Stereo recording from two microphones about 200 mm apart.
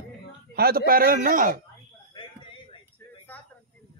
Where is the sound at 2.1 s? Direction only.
25° left (ahead or behind).